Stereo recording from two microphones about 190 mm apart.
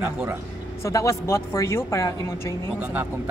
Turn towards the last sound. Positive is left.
turn(degrees=-10)  # may be behind; listen again after turning